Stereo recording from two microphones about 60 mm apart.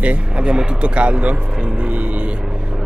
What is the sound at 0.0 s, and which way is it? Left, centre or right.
Speech, centre.